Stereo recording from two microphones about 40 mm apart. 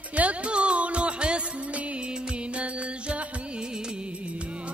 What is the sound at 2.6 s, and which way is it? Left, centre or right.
Music, right.